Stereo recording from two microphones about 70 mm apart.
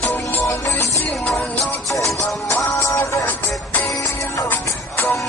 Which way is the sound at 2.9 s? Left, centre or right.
Left.